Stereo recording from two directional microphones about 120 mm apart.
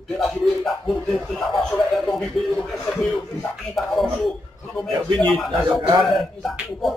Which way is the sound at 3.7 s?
Centre (ahead or behind).